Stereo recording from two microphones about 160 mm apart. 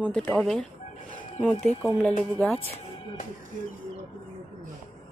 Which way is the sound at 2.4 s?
5° left (ahead or behind).